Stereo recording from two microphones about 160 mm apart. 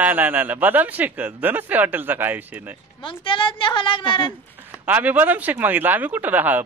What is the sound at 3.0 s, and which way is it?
A woman's voice, 30° left (ahead or behind).